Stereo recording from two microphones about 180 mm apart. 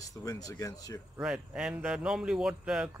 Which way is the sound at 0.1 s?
20° left (ahead or behind).